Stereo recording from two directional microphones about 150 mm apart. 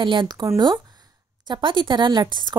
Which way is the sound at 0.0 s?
30° right (ahead or behind).